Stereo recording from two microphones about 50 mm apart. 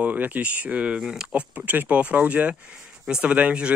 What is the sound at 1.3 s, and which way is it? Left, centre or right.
Speech, right.